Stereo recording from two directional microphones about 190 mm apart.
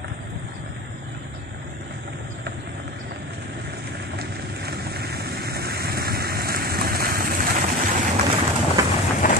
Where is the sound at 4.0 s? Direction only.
60° right (ahead or behind).